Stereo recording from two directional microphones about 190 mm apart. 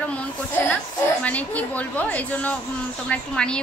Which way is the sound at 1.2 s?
10° left (ahead or behind).